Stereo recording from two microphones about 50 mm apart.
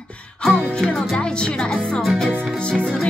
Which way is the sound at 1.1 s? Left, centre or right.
Centre.